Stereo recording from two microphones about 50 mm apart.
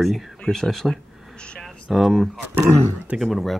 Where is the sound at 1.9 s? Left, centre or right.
Centre.